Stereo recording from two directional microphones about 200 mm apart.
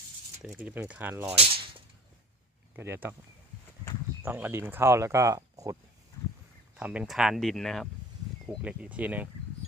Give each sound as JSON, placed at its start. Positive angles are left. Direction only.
{"t": 0.4, "sound": "speech", "side_deg": -5}
{"t": 1.3, "sound": "speech", "side_deg": -30}
{"t": 2.7, "sound": "speech", "side_deg": -10}
{"t": 4.2, "sound": "speech", "side_deg": -10}
{"t": 6.8, "sound": "speech", "side_deg": -5}